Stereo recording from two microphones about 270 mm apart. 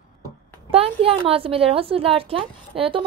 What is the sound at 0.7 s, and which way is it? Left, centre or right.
Speech, right.